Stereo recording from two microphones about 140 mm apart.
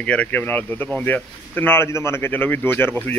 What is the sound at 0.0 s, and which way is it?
Speech, 10° left (ahead or behind).